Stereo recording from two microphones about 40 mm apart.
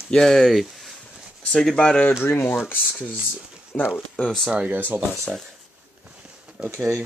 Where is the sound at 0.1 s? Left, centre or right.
Centre.